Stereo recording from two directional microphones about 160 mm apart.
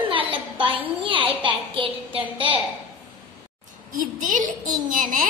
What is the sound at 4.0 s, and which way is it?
A woman's voice, 55° right (ahead or behind).